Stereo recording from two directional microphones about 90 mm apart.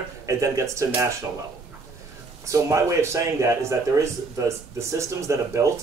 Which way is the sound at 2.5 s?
35° right (ahead or behind).